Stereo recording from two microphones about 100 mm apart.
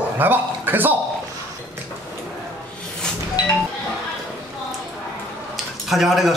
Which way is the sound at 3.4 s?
45° left (ahead or behind).